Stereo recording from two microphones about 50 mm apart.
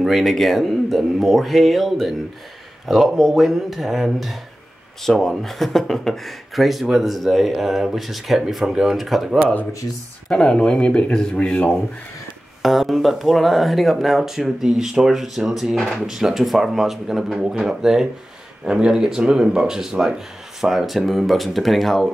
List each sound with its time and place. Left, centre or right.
0.0 s speech: centre
10.2 s speech: centre
12.6 s speech: centre
15.7 s speech: centre
16.0 s speech: centre